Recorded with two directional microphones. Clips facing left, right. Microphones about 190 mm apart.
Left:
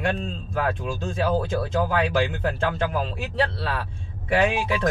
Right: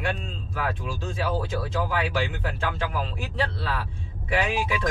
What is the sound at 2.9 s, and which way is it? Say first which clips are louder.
Speech: left 3 dB; 35° left (ahead or behind).